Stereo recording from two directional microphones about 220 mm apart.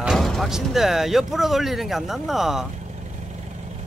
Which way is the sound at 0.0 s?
Centre (ahead or behind).